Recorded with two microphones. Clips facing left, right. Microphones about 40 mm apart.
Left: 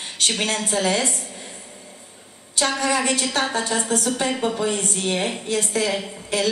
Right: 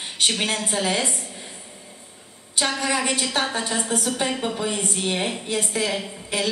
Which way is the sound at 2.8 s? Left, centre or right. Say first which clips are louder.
Left 2 dB; centre.